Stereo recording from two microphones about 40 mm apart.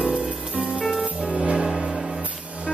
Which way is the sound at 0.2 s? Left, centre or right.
Right.